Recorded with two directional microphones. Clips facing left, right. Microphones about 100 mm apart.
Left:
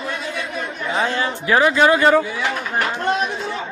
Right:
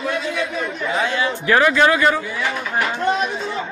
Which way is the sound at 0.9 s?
35° left (ahead or behind).